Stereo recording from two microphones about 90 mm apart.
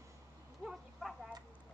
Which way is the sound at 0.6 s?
Centre (ahead or behind).